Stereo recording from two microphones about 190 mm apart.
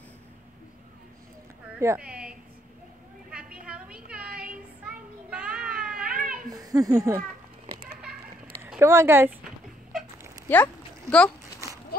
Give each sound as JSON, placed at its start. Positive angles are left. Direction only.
{"t": 1.8, "sound": "a woman's voice", "side_deg": -10}
{"t": 3.3, "sound": "a sound", "side_deg": -5}
{"t": 4.5, "sound": "child singing", "side_deg": -5}
{"t": 6.5, "sound": "speech", "side_deg": -20}
{"t": 8.6, "sound": "speech", "side_deg": -10}
{"t": 10.5, "sound": "speech", "side_deg": 5}
{"t": 11.9, "sound": "splash", "side_deg": 50}